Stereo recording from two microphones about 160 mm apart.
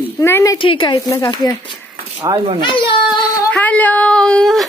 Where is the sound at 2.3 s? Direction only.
20° right (ahead or behind).